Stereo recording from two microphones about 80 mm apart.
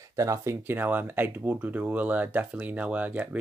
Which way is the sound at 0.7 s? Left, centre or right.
Right.